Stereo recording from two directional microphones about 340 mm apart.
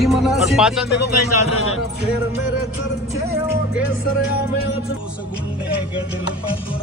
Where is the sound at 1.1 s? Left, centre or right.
Left.